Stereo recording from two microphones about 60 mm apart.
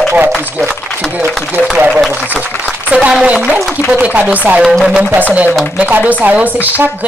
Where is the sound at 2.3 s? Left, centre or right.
Centre.